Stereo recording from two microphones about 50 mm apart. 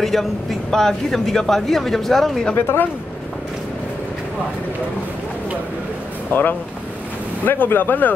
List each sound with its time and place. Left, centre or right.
0.0 s speech: centre
2.5 s speech: left
6.3 s speech: left